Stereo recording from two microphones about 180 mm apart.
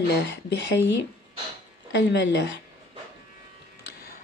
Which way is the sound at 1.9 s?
70° left (ahead or behind).